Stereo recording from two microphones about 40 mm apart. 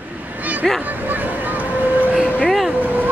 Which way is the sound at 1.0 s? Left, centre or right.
Right.